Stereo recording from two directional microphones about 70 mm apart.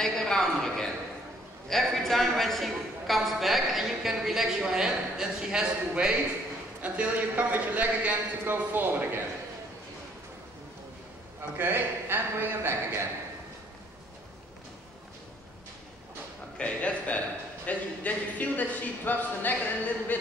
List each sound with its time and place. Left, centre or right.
0.0 s a sound: centre
1.7 s a man's voice: centre; by 9.2 s right
11.5 s a man's voice: right
16.5 s speech: centre